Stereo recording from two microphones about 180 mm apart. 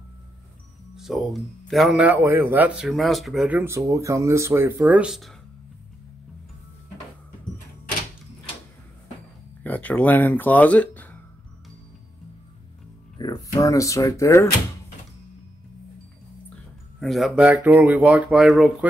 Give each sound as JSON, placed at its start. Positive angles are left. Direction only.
{"t": 0.9, "sound": "speech", "side_deg": 0}
{"t": 9.6, "sound": "speech", "side_deg": 10}
{"t": 13.2, "sound": "speech", "side_deg": 20}
{"t": 17.0, "sound": "speech", "side_deg": 0}